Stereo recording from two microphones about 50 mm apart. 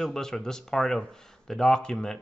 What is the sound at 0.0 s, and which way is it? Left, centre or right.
Speech, centre.